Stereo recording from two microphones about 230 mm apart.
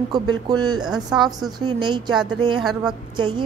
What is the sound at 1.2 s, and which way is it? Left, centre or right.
Speech, centre.